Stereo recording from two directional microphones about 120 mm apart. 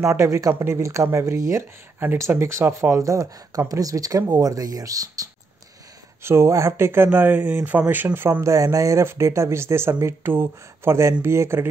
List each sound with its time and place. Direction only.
0.0 s speech: 25° right (ahead or behind)